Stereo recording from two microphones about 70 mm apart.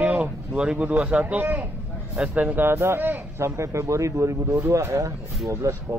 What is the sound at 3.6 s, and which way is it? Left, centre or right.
Speech, right.